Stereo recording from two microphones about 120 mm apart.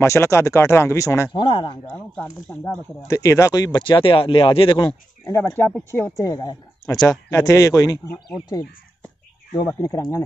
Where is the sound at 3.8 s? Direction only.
45° left (ahead or behind).